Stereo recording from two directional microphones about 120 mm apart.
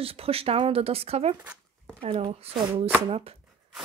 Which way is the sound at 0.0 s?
55° right (ahead or behind).